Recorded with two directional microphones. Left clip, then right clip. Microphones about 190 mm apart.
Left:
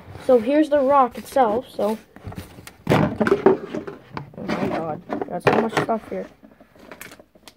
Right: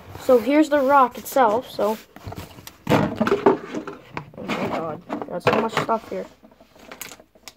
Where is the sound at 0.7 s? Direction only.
15° right (ahead or behind).